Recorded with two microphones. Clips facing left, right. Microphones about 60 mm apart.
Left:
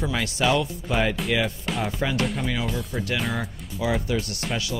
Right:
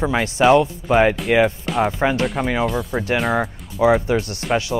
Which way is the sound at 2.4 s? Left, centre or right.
Right.